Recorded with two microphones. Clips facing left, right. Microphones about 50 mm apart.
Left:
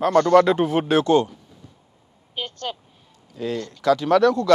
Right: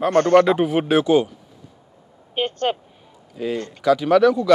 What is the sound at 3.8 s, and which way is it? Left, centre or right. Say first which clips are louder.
Speech: right 2 dB; centre.